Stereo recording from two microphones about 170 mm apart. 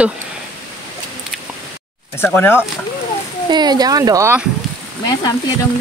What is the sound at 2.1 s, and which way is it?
Speech, 15° left (ahead or behind).